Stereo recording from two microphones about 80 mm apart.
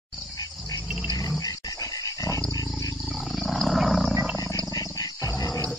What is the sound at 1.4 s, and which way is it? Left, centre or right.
Dog, left.